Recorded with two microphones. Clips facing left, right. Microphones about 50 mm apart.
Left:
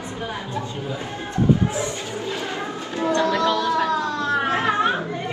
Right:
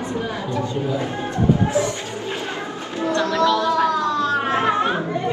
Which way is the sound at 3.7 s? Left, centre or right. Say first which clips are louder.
Right 3 dB; right.